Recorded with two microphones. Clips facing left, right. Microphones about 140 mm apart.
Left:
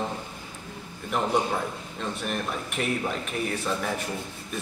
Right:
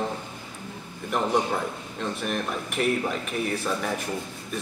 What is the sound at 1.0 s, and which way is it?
Speech, centre (ahead or behind).